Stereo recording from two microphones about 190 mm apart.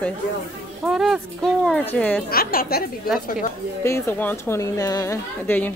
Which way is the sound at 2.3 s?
50° left (ahead or behind).